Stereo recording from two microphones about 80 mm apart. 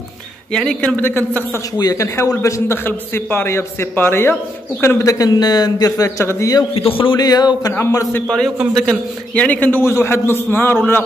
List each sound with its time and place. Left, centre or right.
0.5 s speech: centre
0.8 s a man's voice: left
2.0 s a man's voice: left
4.8 s a man's voice: left
5.4 s speech: left
5.9 s a man's voice: left
7.0 s speech: left
8.7 s a man's voice: centre; by 10.8 s left